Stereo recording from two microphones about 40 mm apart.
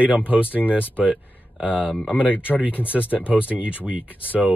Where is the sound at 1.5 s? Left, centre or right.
Right.